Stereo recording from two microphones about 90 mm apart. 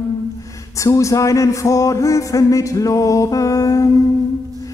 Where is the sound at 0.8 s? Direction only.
40° left (ahead or behind).